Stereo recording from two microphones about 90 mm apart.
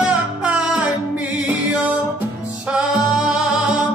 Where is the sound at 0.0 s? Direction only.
10° right (ahead or behind).